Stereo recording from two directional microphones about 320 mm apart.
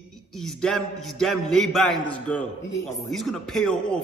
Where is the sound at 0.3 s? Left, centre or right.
Centre.